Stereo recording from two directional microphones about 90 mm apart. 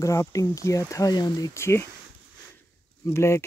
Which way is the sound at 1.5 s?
30° left (ahead or behind).